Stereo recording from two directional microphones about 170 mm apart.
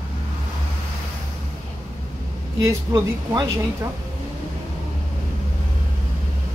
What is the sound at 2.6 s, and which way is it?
A woman's voice, 15° right (ahead or behind).